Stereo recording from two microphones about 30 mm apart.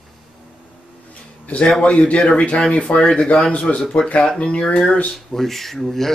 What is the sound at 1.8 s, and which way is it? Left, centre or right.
A man's voice, left.